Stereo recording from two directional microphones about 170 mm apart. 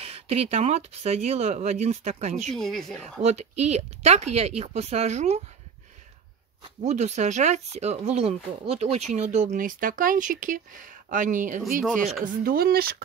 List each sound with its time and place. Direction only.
0.0 s speech: 35° right (ahead or behind)
2.5 s speech: centre (ahead or behind)
3.0 s speech: 40° right (ahead or behind)
6.6 s speech: 40° right (ahead or behind)
11.8 s speech: centre (ahead or behind)
12.3 s speech: 60° right (ahead or behind)